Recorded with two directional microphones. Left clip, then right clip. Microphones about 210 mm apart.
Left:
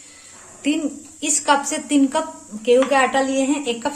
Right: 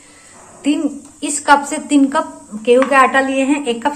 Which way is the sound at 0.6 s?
15° left (ahead or behind).